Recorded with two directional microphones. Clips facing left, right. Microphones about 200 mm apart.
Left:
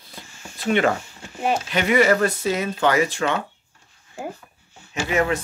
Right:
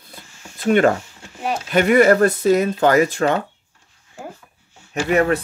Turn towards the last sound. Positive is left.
turn(degrees=-60)  # may be behind; listen again after turning